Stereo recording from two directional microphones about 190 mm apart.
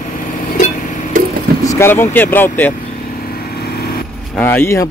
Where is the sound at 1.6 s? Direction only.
15° left (ahead or behind).